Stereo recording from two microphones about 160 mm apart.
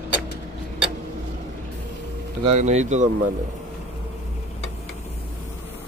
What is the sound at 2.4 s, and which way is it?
Speech, 45° right (ahead or behind).